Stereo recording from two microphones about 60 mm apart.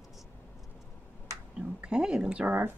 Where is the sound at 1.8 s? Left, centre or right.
Centre.